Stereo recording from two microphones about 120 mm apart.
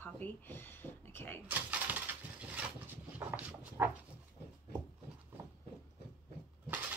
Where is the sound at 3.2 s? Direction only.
15° right (ahead or behind).